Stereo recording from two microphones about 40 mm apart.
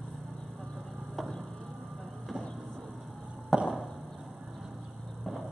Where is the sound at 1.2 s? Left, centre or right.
Centre.